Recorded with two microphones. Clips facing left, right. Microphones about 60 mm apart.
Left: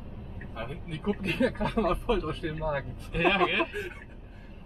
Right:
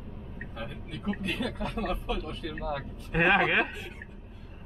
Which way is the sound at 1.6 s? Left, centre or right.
Left.